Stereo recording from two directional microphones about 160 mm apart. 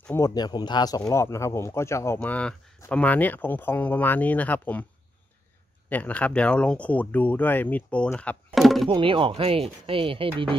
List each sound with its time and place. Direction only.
0.0 s speech: 15° left (ahead or behind)
0.3 s speech: 25° left (ahead or behind); by 4.8 s 10° left (ahead or behind)
5.9 s speech: 10° left (ahead or behind)
8.5 s a sound: centre (ahead or behind)
8.8 s speech: 30° right (ahead or behind)